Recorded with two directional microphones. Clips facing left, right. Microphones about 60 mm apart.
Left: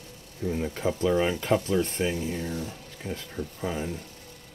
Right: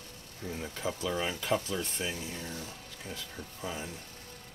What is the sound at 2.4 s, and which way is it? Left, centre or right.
Speech, centre.